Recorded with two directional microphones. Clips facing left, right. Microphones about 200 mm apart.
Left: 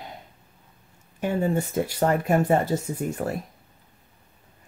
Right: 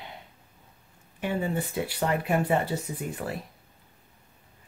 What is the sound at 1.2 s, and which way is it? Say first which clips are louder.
Speech: left 5 dB; 45° left (ahead or behind).